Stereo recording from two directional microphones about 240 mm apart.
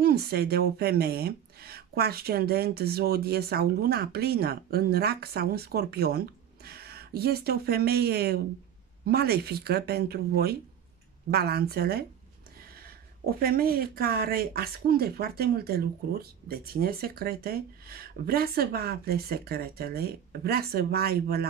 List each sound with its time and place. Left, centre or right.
0.0 s speech: right